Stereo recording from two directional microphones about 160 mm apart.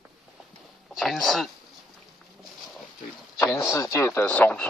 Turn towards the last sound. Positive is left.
turn(degrees=10)  # may be behind; listen again after turning